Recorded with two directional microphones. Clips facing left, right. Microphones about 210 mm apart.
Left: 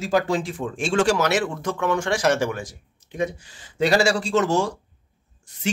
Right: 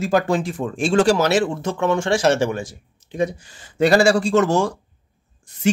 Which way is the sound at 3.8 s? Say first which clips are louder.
Right 5 dB; 50° right (ahead or behind).